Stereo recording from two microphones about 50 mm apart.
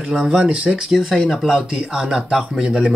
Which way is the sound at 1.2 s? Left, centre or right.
Centre.